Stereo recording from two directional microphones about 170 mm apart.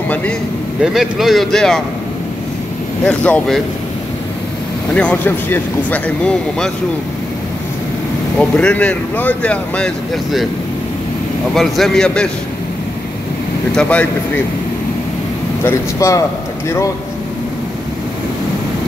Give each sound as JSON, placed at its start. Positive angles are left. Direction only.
{"t": 0.7, "sound": "speech", "side_deg": 0}
{"t": 3.1, "sound": "speech", "side_deg": 10}
{"t": 4.9, "sound": "speech", "side_deg": 10}
{"t": 8.4, "sound": "speech", "side_deg": 5}
{"t": 11.5, "sound": "speech", "side_deg": 0}
{"t": 13.7, "sound": "speech", "side_deg": 10}
{"t": 15.6, "sound": "speech", "side_deg": 15}